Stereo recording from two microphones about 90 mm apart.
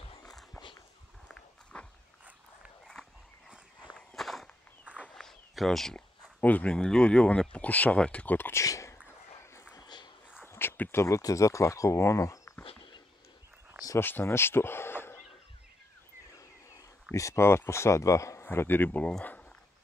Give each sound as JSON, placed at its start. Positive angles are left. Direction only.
{"t": 1.3, "sound": "walk", "side_deg": 15}
{"t": 3.4, "sound": "walk", "side_deg": -10}
{"t": 4.1, "sound": "walk", "side_deg": 5}
{"t": 5.1, "sound": "a sound", "side_deg": 5}
{"t": 6.4, "sound": "speech", "side_deg": 15}
{"t": 8.6, "sound": "a sound", "side_deg": 35}
{"t": 10.4, "sound": "speech", "side_deg": 25}
{"t": 12.6, "sound": "dog", "side_deg": 65}
{"t": 13.9, "sound": "speech", "side_deg": 25}
{"t": 16.3, "sound": "speech", "side_deg": 35}